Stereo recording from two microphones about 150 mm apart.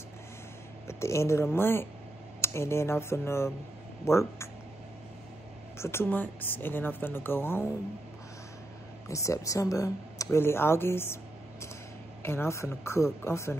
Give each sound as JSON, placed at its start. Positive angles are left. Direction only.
{"t": 0.8, "sound": "speech", "side_deg": 20}
{"t": 5.8, "sound": "speech", "side_deg": 15}
{"t": 9.1, "sound": "speech", "side_deg": 20}
{"t": 12.2, "sound": "speech", "side_deg": 15}